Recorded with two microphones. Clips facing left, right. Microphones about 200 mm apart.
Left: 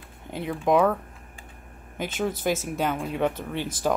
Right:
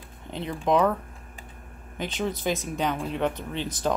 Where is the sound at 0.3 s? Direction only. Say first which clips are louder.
Left 1 dB; 5° left (ahead or behind).